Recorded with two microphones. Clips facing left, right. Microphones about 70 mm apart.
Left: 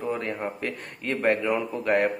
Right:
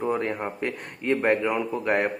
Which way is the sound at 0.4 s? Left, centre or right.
Centre.